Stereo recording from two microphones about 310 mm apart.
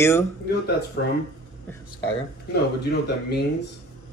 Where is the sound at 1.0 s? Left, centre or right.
Left.